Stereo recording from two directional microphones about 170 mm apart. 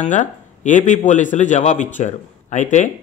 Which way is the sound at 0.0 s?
45° left (ahead or behind).